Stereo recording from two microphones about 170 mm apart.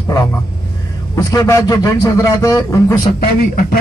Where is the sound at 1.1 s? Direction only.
20° left (ahead or behind).